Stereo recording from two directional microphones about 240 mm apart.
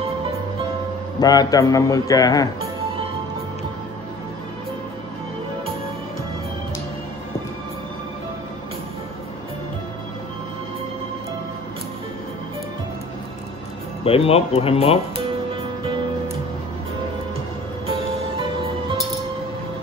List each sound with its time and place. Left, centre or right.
1.2 s a man's voice: centre
14.0 s speech: left